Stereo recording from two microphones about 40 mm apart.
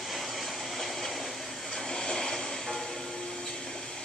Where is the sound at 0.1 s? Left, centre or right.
Centre.